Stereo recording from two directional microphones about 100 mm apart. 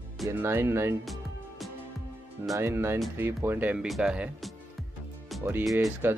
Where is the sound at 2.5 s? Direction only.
25° right (ahead or behind); by 4.3 s 10° right (ahead or behind).